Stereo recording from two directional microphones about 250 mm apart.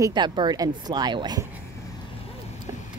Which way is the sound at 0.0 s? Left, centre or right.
Centre.